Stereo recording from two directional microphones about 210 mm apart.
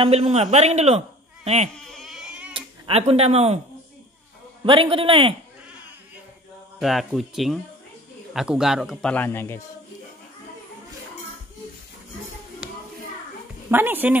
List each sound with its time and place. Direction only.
0.0 s a man's voice: 30° right (ahead or behind)
1.9 s baby cry: centre (ahead or behind)
2.5 s speech: 30° right (ahead or behind)
4.6 s a man's voice: 25° right (ahead or behind)
6.8 s speech: centre (ahead or behind)
13.7 s a woman's voice: 10° right (ahead or behind)